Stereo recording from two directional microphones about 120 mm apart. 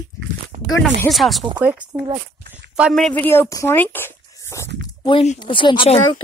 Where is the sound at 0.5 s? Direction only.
75° right (ahead or behind).